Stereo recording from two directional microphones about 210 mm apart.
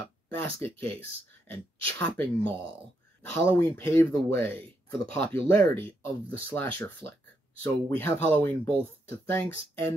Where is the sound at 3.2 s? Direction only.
5° left (ahead or behind).